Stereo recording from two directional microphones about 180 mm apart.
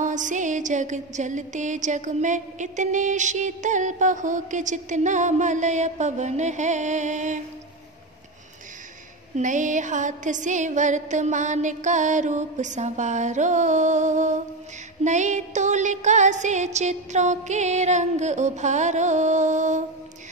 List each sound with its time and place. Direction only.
0.0 s music: 45° right (ahead or behind)
9.3 s music: 45° right (ahead or behind)